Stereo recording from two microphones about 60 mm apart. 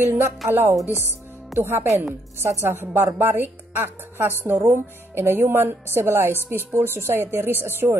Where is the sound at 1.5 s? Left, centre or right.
Right.